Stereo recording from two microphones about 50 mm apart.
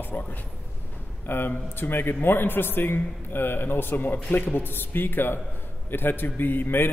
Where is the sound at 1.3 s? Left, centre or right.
Left.